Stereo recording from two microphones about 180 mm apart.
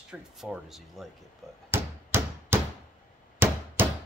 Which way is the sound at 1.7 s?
10° right (ahead or behind).